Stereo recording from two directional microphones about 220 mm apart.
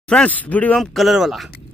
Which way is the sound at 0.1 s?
5° left (ahead or behind).